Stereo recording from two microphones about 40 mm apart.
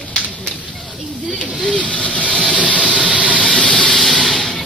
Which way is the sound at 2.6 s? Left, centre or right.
Right.